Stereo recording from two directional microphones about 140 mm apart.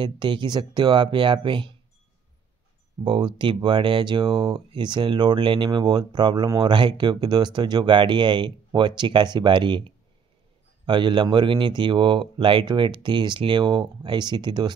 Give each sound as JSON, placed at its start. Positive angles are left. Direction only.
{"t": 0.0, "sound": "speech", "side_deg": -35}
{"t": 3.0, "sound": "speech", "side_deg": -35}